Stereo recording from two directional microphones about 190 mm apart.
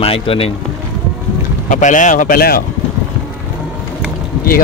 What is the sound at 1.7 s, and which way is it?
Speech, 40° left (ahead or behind).